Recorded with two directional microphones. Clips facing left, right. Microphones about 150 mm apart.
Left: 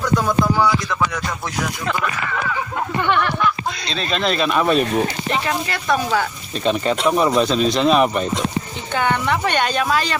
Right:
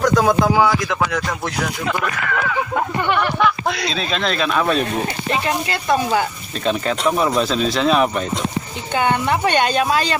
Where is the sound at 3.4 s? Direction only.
85° right.